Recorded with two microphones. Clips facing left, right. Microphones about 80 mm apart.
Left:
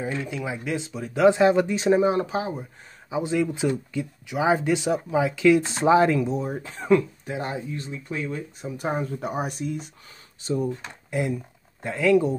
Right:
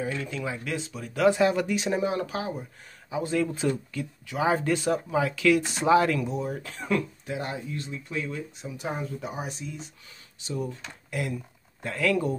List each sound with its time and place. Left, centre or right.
0.0 s speech: left
10.4 s speech: left; by 12.4 s centre